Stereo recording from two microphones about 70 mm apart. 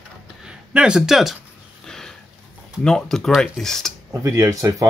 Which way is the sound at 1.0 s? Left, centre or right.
Centre.